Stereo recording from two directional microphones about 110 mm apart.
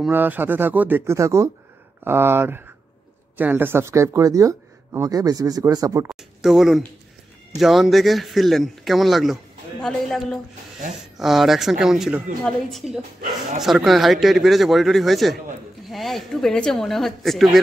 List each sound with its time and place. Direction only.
0.1 s speech: 20° right (ahead or behind)
6.0 s speech: 5° right (ahead or behind)